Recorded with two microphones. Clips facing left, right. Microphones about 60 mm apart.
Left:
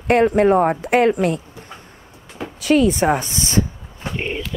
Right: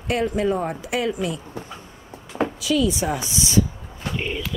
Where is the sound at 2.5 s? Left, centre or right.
Left.